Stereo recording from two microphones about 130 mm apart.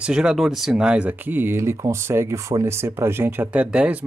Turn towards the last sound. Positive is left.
turn(degrees=-10)  # may be behind; listen again after turning